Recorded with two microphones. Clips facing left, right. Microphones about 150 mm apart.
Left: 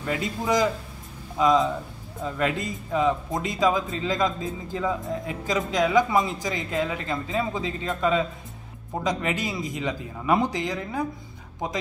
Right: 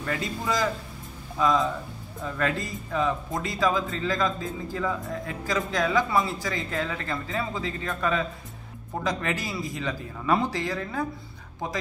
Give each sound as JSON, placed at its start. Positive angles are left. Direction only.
{"t": 0.0, "sound": "speech", "side_deg": 20}